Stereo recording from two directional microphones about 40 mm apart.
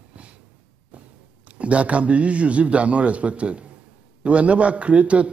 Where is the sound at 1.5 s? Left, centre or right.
Right.